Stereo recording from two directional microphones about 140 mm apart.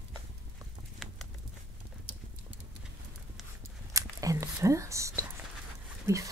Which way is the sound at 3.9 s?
25° right (ahead or behind).